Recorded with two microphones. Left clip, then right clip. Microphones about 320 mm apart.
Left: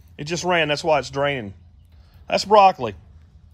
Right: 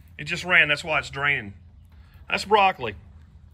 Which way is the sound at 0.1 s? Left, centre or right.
Centre.